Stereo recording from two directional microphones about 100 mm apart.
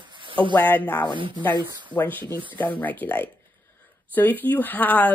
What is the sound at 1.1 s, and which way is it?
Speech, 55° right (ahead or behind).